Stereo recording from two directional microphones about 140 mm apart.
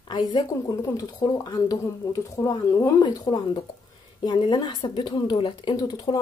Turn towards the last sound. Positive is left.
turn(degrees=30)  # may be behind; listen again after turning